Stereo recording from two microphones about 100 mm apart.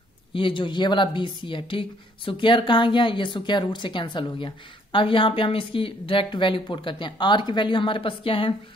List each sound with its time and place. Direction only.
0.3 s a woman's voice: 55° left (ahead or behind)